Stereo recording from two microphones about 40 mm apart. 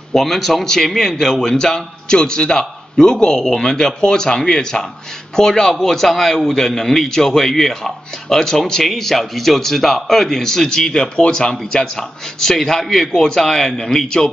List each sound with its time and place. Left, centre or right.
0.1 s a man's voice: centre